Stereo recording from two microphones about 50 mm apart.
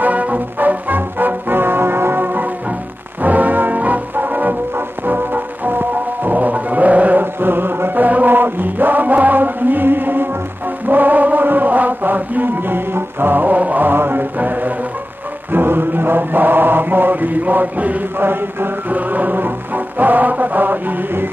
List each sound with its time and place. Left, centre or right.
0.0 s music: right
7.3 s chant: right
15.5 s chant: right
18.2 s music: right